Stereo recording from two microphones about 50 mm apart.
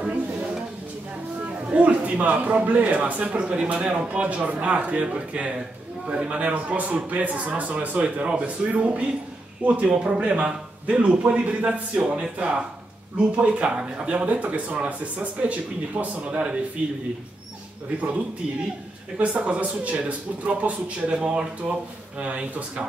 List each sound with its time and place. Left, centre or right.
0.0 s a sound: right
1.7 s a man's voice: right
19.1 s a man's voice: right